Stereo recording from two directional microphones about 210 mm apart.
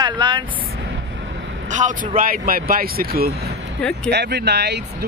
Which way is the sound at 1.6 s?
35° right (ahead or behind).